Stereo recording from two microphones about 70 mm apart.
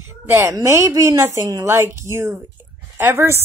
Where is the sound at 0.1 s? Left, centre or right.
Right.